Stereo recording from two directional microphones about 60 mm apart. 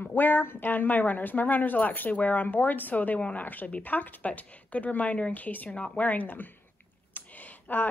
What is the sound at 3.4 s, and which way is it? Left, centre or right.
A woman's voice, left.